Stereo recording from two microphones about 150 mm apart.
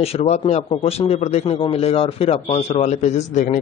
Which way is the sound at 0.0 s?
45° left (ahead or behind).